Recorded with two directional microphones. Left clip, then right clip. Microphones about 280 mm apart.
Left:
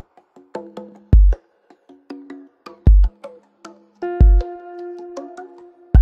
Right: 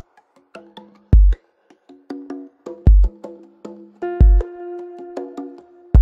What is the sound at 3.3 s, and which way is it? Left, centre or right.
Music, centre.